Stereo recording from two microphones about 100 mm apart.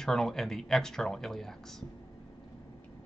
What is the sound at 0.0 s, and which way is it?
Speech, 5° left (ahead or behind).